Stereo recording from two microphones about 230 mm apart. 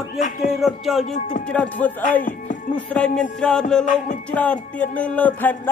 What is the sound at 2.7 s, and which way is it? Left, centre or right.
Speech, centre.